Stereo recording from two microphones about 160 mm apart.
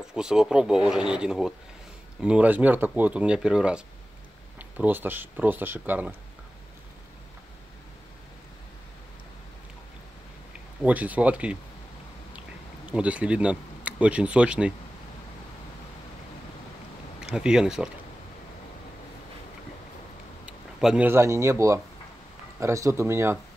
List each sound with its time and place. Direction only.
0.0 s speech: 5° right (ahead or behind)
10.8 s speech: 10° right (ahead or behind)
12.8 s speech: 10° right (ahead or behind)
17.2 s speech: 5° right (ahead or behind)
20.4 s speech: 5° right (ahead or behind)